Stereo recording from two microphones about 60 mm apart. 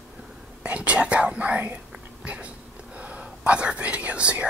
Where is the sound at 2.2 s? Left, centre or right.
Right.